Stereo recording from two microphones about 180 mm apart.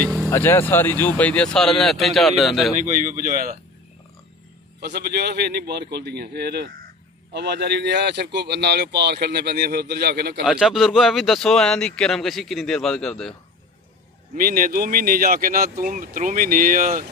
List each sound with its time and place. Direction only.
0.3 s speech: 10° left (ahead or behind)
2.8 s speech: 45° right (ahead or behind)
4.7 s a man's voice: 60° right (ahead or behind)
10.4 s speech: 5° right (ahead or behind)
14.3 s speech: 50° right (ahead or behind)